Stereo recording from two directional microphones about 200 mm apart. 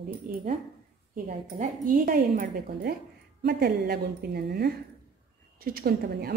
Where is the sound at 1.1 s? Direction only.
45° right (ahead or behind).